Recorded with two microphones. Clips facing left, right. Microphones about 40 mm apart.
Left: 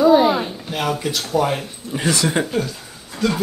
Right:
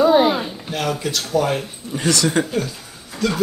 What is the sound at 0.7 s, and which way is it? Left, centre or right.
Speech, centre.